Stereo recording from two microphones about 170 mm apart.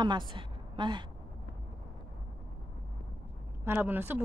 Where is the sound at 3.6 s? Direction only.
10° right (ahead or behind).